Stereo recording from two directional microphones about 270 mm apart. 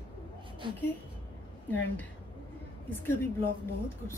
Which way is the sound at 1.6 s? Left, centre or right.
Centre.